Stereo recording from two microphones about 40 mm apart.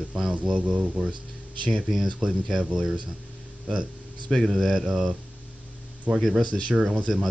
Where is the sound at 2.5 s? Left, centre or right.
Centre.